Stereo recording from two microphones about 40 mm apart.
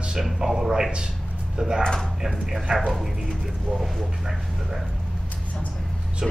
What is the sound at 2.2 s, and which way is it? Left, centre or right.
Speech, centre.